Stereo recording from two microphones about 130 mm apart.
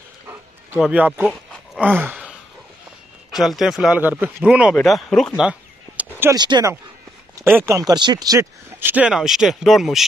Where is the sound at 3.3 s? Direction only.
Centre (ahead or behind).